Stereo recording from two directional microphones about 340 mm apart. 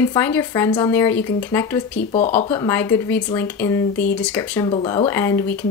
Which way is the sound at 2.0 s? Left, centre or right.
Centre.